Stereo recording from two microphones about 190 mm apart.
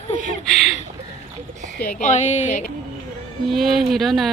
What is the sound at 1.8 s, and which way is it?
Speech, 45° left (ahead or behind).